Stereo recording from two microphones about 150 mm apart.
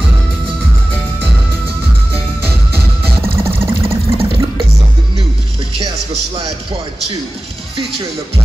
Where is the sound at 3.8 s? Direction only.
40° right (ahead or behind).